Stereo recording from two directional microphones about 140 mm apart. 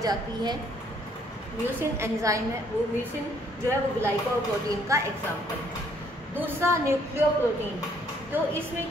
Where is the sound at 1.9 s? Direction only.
20° right (ahead or behind).